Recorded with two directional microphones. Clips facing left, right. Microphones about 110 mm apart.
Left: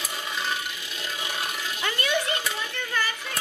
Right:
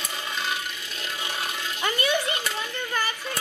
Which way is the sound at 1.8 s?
20° right (ahead or behind).